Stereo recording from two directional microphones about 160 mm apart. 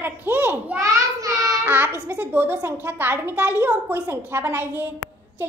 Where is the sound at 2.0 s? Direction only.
10° right (ahead or behind).